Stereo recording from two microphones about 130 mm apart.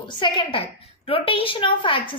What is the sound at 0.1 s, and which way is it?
A woman's voice, 35° left (ahead or behind).